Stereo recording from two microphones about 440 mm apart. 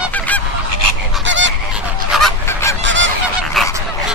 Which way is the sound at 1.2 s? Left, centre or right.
Right.